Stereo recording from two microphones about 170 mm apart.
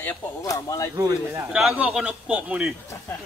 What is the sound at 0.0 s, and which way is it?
Speech, 15° left (ahead or behind).